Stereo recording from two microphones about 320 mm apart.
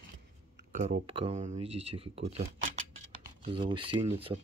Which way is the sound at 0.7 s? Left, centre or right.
Centre.